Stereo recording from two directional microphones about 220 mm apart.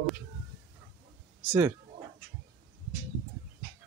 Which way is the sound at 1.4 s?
5° right (ahead or behind).